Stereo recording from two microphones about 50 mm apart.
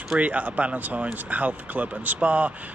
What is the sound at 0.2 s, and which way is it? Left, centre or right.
Speech, right.